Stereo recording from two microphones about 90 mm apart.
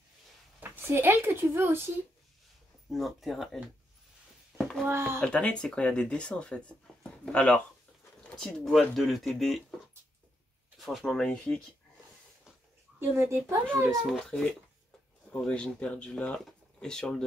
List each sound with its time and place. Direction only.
0.6 s speech: 25° right (ahead or behind)
2.9 s speech: centre (ahead or behind)
4.6 s a sound: 5° left (ahead or behind)
4.8 s speech: 30° right (ahead or behind)
5.2 s speech: 10° left (ahead or behind)
10.8 s speech: centre (ahead or behind)
13.1 s a child's voice: 30° right (ahead or behind)
13.8 s speech: 5° left (ahead or behind)